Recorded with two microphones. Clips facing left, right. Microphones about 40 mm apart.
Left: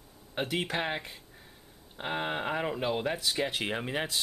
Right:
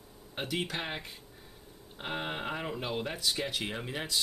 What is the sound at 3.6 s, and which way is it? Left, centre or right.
Speech, left.